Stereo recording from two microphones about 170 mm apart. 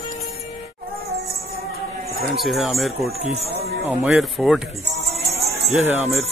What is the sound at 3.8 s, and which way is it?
Speech, 5° right (ahead or behind).